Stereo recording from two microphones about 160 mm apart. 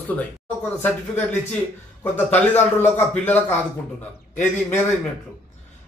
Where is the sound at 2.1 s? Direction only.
10° left (ahead or behind).